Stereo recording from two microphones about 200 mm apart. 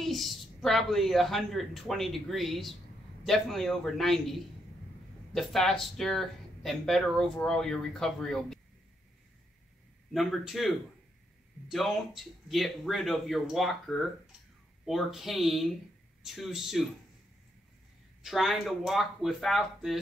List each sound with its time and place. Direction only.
0.0 s speech: centre (ahead or behind)
10.1 s speech: centre (ahead or behind)
18.2 s speech: centre (ahead or behind)